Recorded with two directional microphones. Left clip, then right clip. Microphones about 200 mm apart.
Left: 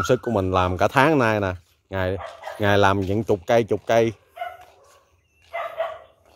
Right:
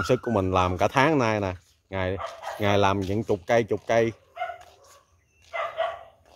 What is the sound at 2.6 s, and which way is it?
Speech, 30° left (ahead or behind).